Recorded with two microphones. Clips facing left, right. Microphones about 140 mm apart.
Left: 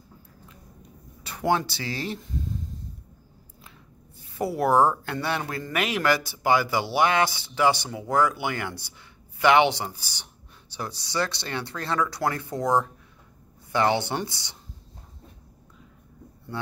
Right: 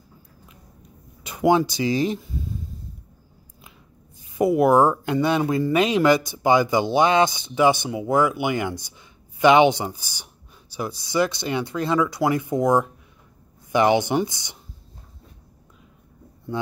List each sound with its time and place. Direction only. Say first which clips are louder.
1.2 s speech: right 6 dB; 15° right (ahead or behind)
2.2 s a sound: right 1 dB; 5° right (ahead or behind)
4.4 s speech: right 5 dB; 15° right (ahead or behind)